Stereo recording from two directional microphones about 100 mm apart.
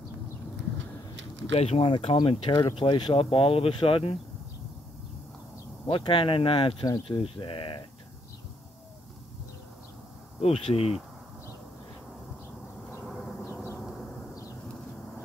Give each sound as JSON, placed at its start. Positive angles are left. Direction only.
{"t": 1.5, "sound": "speech", "side_deg": 85}
{"t": 2.2, "sound": "speech", "side_deg": 55}
{"t": 5.9, "sound": "speech", "side_deg": 60}
{"t": 10.4, "sound": "speech", "side_deg": 75}
{"t": 13.0, "sound": "a sound", "side_deg": 0}